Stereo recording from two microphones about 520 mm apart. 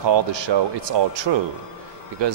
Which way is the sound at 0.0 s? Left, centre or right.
Right.